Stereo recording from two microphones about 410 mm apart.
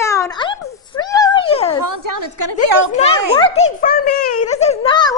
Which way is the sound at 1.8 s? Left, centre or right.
Right.